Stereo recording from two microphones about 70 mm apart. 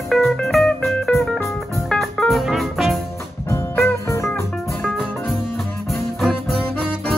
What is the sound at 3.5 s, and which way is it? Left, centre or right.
Music, left.